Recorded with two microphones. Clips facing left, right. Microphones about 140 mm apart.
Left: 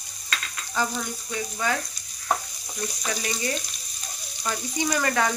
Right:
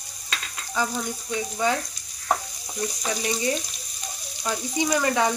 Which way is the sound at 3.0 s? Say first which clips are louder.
Right 3 dB; 20° right (ahead or behind).